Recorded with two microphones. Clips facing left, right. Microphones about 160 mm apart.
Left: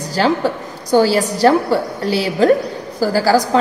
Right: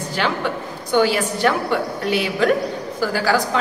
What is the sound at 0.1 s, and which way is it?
A woman's voice, 35° left (ahead or behind).